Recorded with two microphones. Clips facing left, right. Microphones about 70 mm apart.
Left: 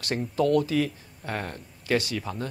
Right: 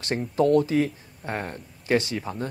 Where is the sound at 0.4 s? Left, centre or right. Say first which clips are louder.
Right 3 dB; right.